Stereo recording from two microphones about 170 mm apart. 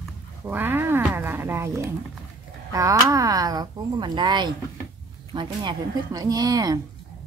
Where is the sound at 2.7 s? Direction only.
20° right (ahead or behind).